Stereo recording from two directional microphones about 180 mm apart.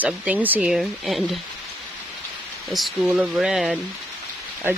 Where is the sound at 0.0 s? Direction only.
10° right (ahead or behind).